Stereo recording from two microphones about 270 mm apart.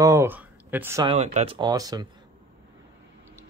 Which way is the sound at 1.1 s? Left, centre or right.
Right.